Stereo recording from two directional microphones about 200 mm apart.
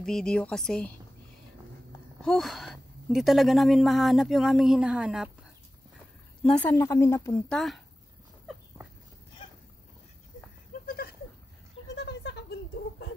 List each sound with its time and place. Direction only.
0.0 s speech: 5° left (ahead or behind)
2.2 s speech: centre (ahead or behind)
6.5 s a woman's voice: 10° left (ahead or behind)
10.9 s goat: 50° left (ahead or behind)
11.9 s a sound: 60° left (ahead or behind)